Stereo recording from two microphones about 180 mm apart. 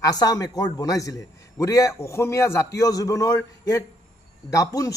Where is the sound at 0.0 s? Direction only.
20° left (ahead or behind).